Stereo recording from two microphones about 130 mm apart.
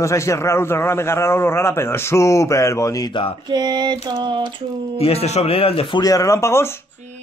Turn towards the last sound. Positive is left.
turn(degrees=20)  # may be behind; listen again after turning